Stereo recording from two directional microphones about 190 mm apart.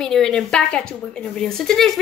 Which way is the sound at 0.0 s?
5° left (ahead or behind).